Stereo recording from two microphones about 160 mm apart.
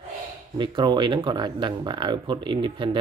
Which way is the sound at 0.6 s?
30° right (ahead or behind).